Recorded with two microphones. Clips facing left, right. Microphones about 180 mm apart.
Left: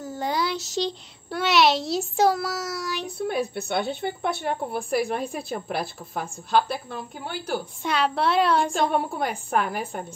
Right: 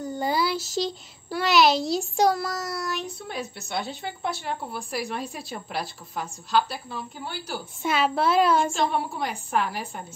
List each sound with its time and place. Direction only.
0.0 s a child's voice: centre (ahead or behind)
3.3 s a woman's voice: 60° left (ahead or behind)
7.8 s a woman's voice: 5° right (ahead or behind)
8.7 s a woman's voice: 50° left (ahead or behind)